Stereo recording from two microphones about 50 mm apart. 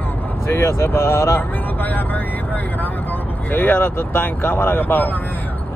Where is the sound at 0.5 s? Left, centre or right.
Left.